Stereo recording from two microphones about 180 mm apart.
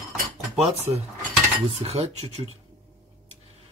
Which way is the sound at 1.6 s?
35° right (ahead or behind).